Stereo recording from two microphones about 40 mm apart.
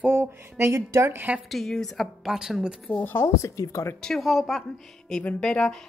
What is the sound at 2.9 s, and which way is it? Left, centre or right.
Speech, left.